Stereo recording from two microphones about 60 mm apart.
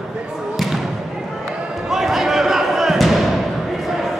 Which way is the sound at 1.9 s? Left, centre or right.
Centre.